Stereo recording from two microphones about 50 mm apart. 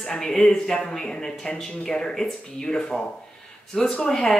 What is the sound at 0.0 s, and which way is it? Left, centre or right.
Speech, centre.